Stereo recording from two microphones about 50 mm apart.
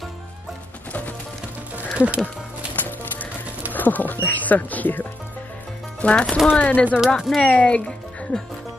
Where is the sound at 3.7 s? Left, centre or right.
Left.